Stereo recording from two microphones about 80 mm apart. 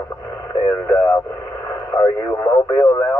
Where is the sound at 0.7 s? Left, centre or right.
Left.